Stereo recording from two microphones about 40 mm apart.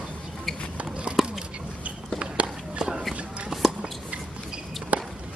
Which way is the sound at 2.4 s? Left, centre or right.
Right.